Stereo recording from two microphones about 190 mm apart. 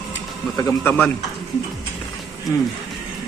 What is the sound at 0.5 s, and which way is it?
Speech, 15° left (ahead or behind).